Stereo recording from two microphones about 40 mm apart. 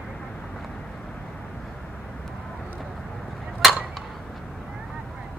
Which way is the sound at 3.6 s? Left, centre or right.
Centre.